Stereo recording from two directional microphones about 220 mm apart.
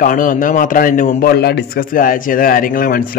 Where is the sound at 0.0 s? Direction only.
40° left (ahead or behind).